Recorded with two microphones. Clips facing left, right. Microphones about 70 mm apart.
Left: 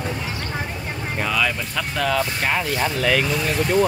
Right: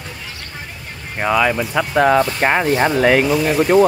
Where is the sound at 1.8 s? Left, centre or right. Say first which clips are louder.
Right 9 dB; right.